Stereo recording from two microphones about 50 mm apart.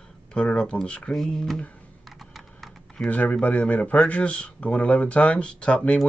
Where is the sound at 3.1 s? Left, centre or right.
Left.